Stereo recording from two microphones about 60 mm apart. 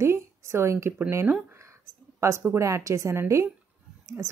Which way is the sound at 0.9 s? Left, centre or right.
Right.